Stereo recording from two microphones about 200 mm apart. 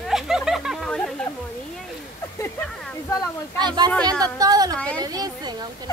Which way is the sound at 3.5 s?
20° right (ahead or behind).